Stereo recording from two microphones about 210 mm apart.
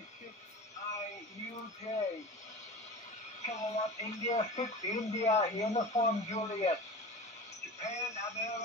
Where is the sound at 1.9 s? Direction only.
30° left (ahead or behind).